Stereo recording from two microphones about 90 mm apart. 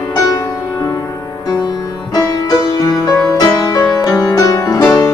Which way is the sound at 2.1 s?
45° left (ahead or behind).